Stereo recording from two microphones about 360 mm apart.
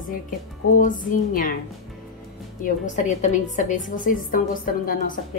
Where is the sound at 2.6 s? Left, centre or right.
Centre.